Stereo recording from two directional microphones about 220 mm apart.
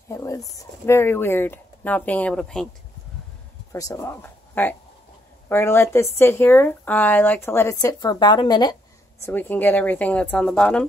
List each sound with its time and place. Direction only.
0.1 s speech: 15° left (ahead or behind)
3.7 s speech: 15° left (ahead or behind)
9.2 s speech: 10° left (ahead or behind)